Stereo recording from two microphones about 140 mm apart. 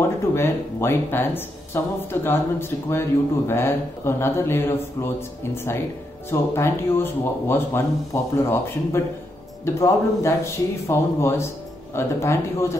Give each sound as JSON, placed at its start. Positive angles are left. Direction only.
{"t": 0.3, "sound": "speech", "side_deg": 15}